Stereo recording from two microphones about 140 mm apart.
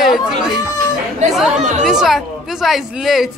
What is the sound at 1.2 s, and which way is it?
Speech, 55° right (ahead or behind).